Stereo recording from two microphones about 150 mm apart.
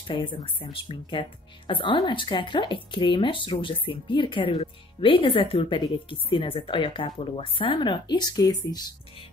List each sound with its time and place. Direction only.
0.0 s speech: 35° left (ahead or behind)